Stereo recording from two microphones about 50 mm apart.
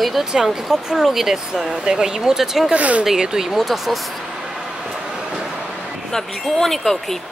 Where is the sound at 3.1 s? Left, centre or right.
Centre.